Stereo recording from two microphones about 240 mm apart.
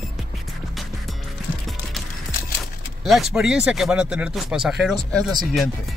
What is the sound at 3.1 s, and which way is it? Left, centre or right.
Speech, centre.